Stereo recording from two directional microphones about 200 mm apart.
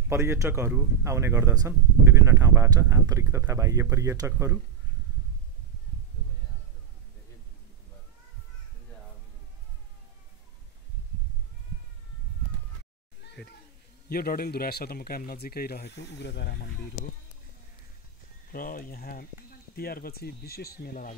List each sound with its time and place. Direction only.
0.1 s speech: 15° right (ahead or behind)
14.0 s speech: 50° left (ahead or behind)
18.5 s speech: 45° left (ahead or behind)